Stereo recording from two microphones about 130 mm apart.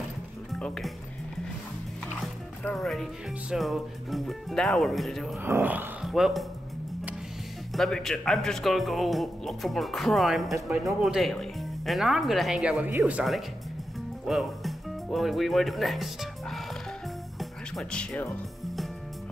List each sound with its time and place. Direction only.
0.5 s speech: 5° left (ahead or behind)
2.7 s speech: centre (ahead or behind)
5.4 s speech: 15° right (ahead or behind)
6.0 s speech: centre (ahead or behind)
7.7 s speech: centre (ahead or behind)
17.4 s music: 5° left (ahead or behind)